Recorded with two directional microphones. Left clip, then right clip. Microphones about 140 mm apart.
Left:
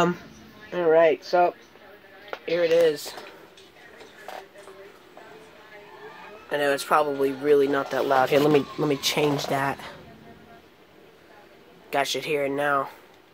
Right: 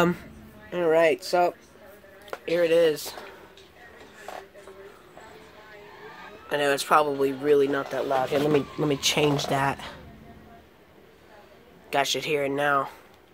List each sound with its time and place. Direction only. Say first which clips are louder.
0.7 s speech: left 2 dB; centre (ahead or behind)
6.5 s speech: even; centre (ahead or behind); by 8.0 s 20° left (ahead or behind)
8.0 s speech: left 5 dB; 40° left (ahead or behind)
8.5 s speech: left 3 dB; 25° left (ahead or behind)
8.8 s speech: even; 5° left (ahead or behind)
11.9 s speech: even; 5° left (ahead or behind)